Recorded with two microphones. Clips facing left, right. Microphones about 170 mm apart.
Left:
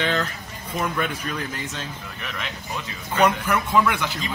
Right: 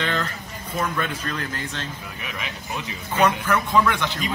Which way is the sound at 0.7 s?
10° left (ahead or behind).